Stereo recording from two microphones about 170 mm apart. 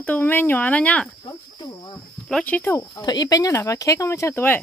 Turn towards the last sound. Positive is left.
turn(degrees=15)  # may be behind; listen again after turning